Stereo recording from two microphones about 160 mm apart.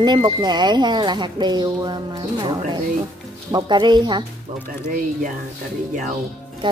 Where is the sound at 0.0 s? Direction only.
30° right (ahead or behind).